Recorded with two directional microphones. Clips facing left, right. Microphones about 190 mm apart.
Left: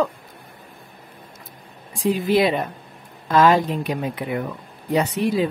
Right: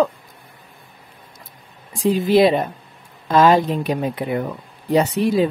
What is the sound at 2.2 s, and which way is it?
Speech, 30° right (ahead or behind).